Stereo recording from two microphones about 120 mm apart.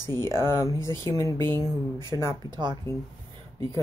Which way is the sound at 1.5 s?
30° right (ahead or behind).